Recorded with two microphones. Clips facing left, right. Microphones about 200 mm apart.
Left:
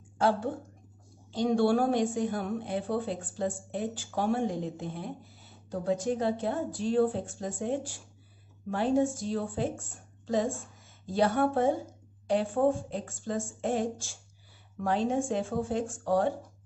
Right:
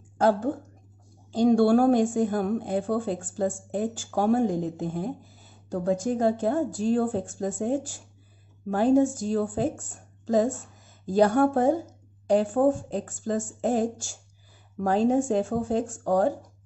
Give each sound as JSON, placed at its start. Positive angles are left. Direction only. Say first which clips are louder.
{"t": 0.2, "sound": "a woman's voice", "louder": "right 5 dB", "side_deg": -45}